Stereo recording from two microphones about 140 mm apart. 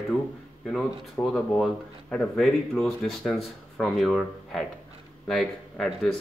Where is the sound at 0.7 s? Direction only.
5° left (ahead or behind).